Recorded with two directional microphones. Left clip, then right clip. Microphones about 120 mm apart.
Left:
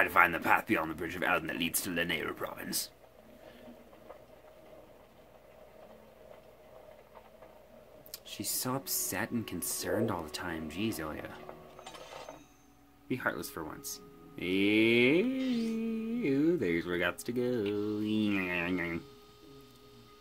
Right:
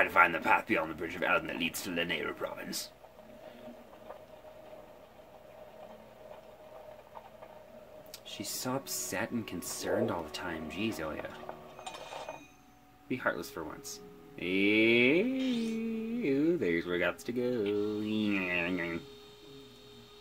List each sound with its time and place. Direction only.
0.0 s speech: 65° left (ahead or behind)
8.1 s speech: 55° left (ahead or behind)
13.1 s speech: 60° left (ahead or behind)